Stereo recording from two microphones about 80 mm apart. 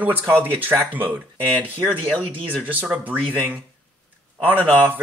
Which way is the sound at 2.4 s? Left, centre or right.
Centre.